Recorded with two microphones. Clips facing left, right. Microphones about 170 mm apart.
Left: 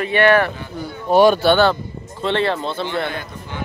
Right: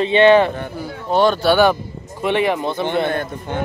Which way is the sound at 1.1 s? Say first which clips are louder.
Left 3 dB; 10° left (ahead or behind).